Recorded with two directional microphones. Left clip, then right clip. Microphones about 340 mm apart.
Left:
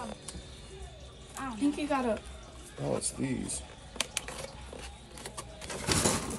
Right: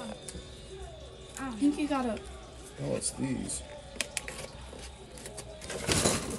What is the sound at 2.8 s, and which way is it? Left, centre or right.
Speech, centre.